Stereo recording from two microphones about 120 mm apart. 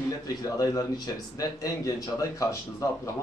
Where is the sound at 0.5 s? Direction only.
30° left (ahead or behind).